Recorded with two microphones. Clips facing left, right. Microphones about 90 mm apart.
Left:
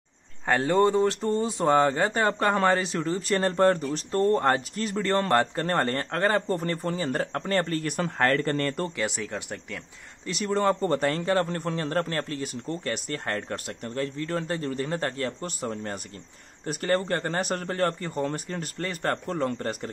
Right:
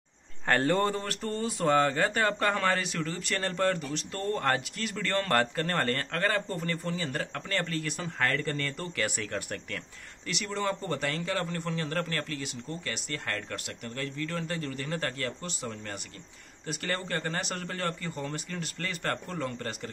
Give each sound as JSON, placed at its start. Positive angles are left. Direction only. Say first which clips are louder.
{"t": 0.5, "sound": "speech", "louder": "left 4 dB", "side_deg": 10}
{"t": 6.5, "sound": "a man's voice", "louder": "left 5 dB", "side_deg": 40}
{"t": 8.9, "sound": "speech", "louder": "left 2 dB", "side_deg": 20}
{"t": 10.3, "sound": "a man's voice", "louder": "left 7 dB", "side_deg": 40}
{"t": 15.4, "sound": "a man's voice", "louder": "left 6 dB", "side_deg": 40}